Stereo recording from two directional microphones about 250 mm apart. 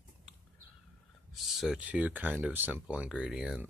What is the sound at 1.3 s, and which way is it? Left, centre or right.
Speech, centre.